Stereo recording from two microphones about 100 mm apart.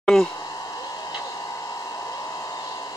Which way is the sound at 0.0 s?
Centre (ahead or behind).